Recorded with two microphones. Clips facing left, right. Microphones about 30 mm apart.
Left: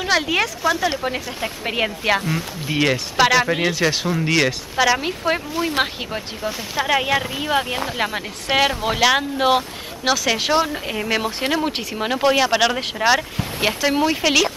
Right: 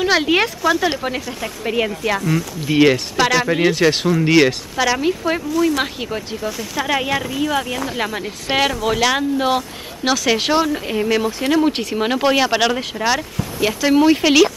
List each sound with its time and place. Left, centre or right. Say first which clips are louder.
0.0 s a sound: right 3 dB; centre
0.7 s speech: right 2 dB; centre
1.4 s speech: right 2 dB; centre
2.7 s speech: right 6 dB; centre
3.2 s speech: even; centre
4.7 s speech: left 1 dB; centre
5.5 s speech: right 3 dB; left
5.9 s speech: right 3 dB; centre; by 7.9 s left
7.9 s speech: right 1 dB; centre
10.0 s speech: right 2 dB; centre
11.2 s speech: right 3 dB; left
11.5 s speech: right 5 dB; centre
13.4 s speech: right 1 dB; left
13.8 s speech: right 7 dB; centre